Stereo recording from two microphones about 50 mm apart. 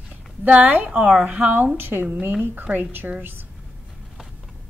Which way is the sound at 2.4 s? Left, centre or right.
Right.